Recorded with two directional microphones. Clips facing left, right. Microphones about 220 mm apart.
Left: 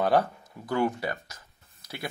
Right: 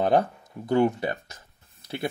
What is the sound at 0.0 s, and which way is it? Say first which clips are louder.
Speech: right 2 dB; 20° right (ahead or behind).